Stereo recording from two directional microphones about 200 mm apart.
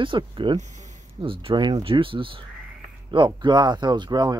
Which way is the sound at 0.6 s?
35° right (ahead or behind).